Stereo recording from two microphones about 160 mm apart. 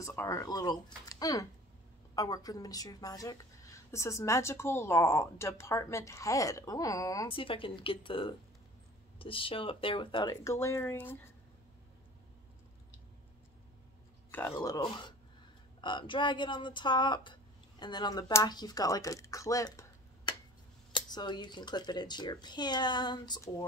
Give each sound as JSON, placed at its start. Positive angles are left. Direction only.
{"t": 0.0, "sound": "a woman's voice", "side_deg": 20}
{"t": 7.2, "sound": "a woman's voice", "side_deg": 35}
{"t": 14.6, "sound": "a woman's voice", "side_deg": 25}